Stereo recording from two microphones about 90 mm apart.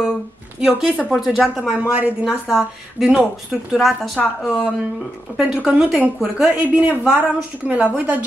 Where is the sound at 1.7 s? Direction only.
15° right (ahead or behind); by 4.2 s centre (ahead or behind).